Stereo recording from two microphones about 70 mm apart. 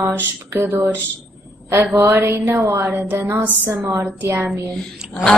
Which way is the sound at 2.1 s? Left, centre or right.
Right.